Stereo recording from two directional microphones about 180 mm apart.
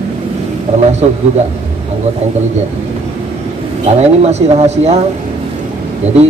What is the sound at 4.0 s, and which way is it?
Speech, 35° right (ahead or behind).